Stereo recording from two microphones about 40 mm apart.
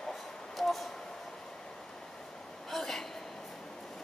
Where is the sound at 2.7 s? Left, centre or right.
Centre.